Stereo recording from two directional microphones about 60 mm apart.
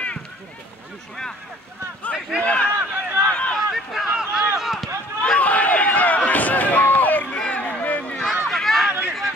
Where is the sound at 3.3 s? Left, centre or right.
Left.